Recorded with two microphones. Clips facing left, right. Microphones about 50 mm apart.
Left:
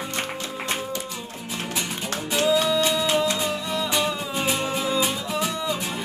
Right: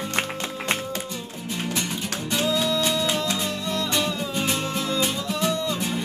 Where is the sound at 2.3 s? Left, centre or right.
Centre.